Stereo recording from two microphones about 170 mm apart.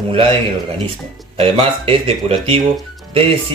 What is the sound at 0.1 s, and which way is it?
Speech, 35° right (ahead or behind).